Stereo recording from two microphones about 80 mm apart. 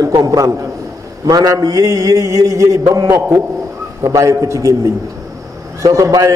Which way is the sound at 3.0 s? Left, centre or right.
Right.